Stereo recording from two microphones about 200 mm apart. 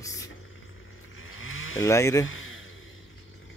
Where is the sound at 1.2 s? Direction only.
80° left.